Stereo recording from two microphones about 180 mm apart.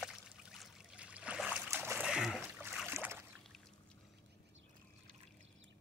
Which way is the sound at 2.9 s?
15° right (ahead or behind).